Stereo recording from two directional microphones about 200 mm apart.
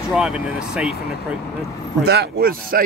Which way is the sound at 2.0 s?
55° right (ahead or behind).